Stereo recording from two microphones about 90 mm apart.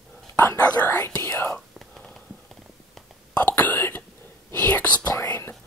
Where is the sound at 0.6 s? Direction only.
20° left (ahead or behind).